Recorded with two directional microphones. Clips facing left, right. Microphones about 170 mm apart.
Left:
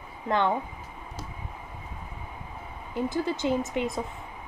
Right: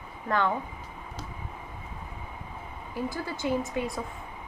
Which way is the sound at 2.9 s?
20° left (ahead or behind).